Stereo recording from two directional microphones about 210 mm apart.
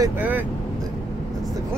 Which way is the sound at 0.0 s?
10° right (ahead or behind).